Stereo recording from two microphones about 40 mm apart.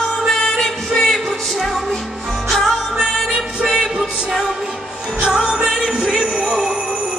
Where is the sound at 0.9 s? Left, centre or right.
Centre.